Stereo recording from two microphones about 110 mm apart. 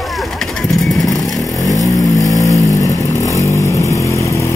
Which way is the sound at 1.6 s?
30° left (ahead or behind).